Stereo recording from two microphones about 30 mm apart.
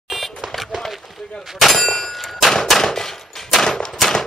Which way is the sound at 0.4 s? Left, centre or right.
Right.